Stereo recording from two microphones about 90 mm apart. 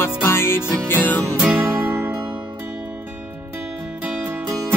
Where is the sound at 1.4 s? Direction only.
5° right (ahead or behind).